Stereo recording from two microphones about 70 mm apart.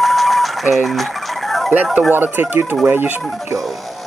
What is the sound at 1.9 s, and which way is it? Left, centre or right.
Speech, right.